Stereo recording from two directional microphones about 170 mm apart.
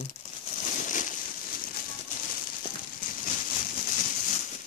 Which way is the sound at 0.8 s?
50° left (ahead or behind).